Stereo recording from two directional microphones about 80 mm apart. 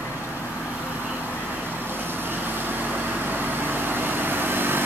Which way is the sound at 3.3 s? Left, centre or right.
Right.